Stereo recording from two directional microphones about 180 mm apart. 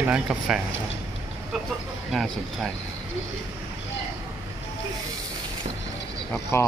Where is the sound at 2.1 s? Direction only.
Centre (ahead or behind).